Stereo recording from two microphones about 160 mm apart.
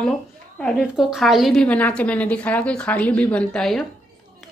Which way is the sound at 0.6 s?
5° left (ahead or behind).